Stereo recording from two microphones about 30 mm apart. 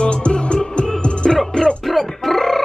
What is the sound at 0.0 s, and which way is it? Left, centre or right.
Music, left.